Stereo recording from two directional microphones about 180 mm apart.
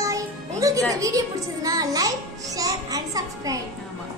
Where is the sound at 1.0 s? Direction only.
20° right (ahead or behind).